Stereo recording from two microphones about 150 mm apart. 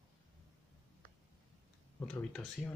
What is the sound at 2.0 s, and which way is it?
Speech, 5° left (ahead or behind).